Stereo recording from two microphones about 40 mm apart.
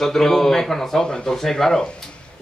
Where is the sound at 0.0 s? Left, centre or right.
Centre.